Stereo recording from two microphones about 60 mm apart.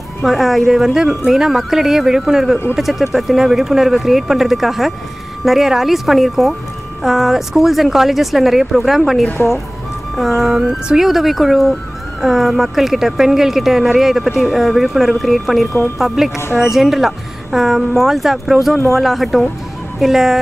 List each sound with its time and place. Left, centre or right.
0.2 s speech: centre